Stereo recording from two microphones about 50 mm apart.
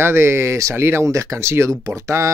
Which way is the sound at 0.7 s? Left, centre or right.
Right.